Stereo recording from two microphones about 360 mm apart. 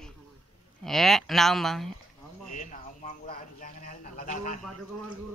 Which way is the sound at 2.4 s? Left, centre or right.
Centre.